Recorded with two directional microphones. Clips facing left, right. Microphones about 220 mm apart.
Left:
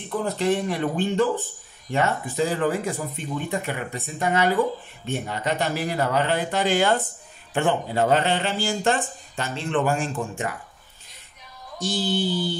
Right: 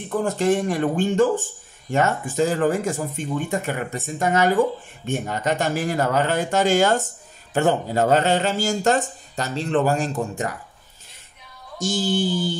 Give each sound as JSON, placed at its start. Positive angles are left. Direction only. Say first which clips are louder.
{"t": 0.2, "sound": "speech", "louder": "right 3 dB", "side_deg": -45}
{"t": 11.8, "sound": "speech", "louder": "right 2 dB", "side_deg": -45}